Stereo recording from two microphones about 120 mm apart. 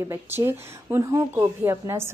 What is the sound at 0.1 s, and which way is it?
Speech, 20° right (ahead or behind).